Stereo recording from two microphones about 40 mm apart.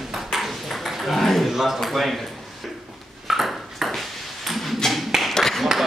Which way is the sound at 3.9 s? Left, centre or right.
Centre.